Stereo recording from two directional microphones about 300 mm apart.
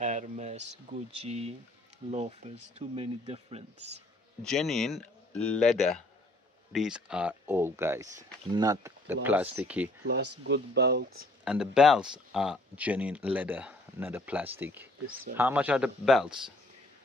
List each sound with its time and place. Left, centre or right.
0.0 s speech: right
4.4 s speech: centre
10.4 s speech: right
11.4 s speech: centre